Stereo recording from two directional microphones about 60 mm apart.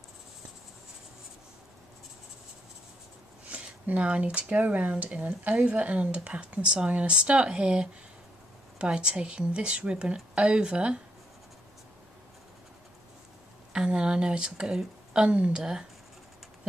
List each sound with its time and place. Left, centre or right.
3.5 s speech: right
13.7 s speech: centre